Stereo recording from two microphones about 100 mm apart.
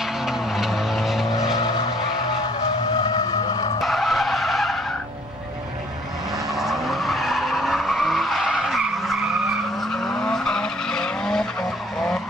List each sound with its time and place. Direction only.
0.3 s vehicle: centre (ahead or behind)
3.0 s vehicle: 40° left (ahead or behind)
3.8 s vehicle: centre (ahead or behind)
6.5 s vehicle: centre (ahead or behind)